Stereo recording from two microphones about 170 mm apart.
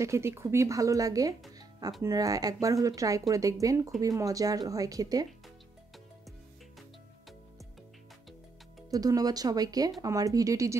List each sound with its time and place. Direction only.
0.0 s speech: 15° right (ahead or behind)
8.9 s speech: 20° right (ahead or behind)